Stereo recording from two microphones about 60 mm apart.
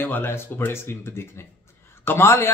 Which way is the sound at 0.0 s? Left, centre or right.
Left.